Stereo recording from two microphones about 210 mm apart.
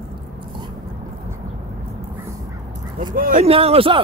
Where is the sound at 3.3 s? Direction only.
30° right (ahead or behind).